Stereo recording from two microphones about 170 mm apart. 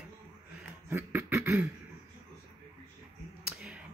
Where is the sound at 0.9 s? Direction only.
10° right (ahead or behind).